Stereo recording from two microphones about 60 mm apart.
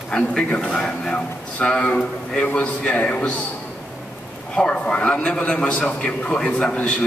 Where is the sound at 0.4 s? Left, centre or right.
Left.